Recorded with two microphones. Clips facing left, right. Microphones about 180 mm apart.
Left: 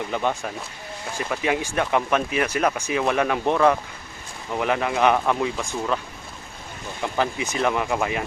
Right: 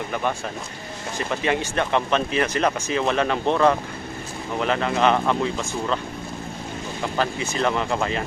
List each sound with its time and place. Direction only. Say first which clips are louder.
0.1 s speech: left 1 dB; 20° left (ahead or behind)
7.2 s speech: even; 15° left (ahead or behind)